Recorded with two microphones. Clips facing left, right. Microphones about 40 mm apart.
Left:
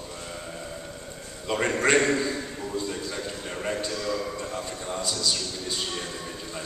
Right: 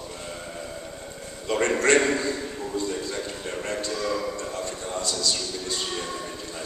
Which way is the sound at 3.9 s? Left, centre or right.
Right.